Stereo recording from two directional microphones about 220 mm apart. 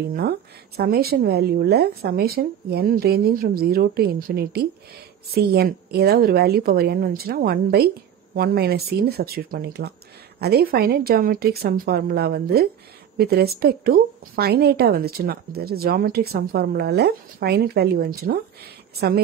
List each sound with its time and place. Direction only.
0.1 s a woman's voice: 45° right (ahead or behind)